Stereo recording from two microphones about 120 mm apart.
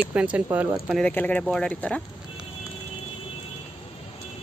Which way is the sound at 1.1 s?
10° left (ahead or behind).